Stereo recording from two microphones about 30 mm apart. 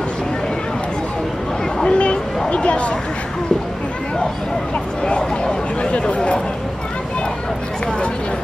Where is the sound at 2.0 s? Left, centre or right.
Left.